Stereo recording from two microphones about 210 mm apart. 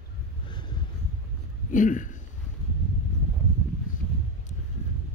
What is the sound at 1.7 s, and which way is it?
Speech, 40° left (ahead or behind).